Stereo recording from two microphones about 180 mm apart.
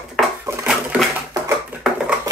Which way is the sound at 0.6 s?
5° right (ahead or behind).